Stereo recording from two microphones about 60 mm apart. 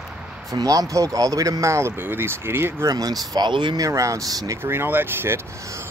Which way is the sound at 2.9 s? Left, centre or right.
Right.